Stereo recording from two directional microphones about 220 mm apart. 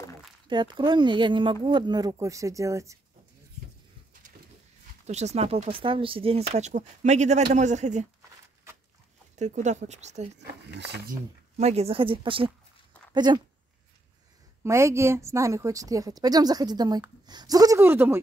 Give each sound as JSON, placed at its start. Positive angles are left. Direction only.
{"t": 0.5, "sound": "speech", "side_deg": -20}
{"t": 5.0, "sound": "speech", "side_deg": -30}
{"t": 9.3, "sound": "speech", "side_deg": -30}
{"t": 11.5, "sound": "speech", "side_deg": -30}
{"t": 14.6, "sound": "a woman's voice", "side_deg": -10}